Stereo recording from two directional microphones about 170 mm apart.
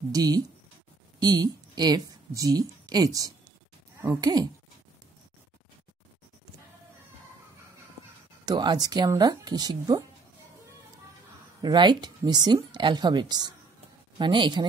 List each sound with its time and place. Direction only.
0.1 s a woman's voice: 25° right (ahead or behind)
8.5 s speech: 25° right (ahead or behind)
11.6 s speech: 25° right (ahead or behind)